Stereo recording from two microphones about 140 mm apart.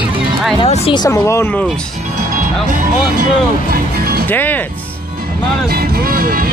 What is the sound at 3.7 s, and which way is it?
Music, 90° right.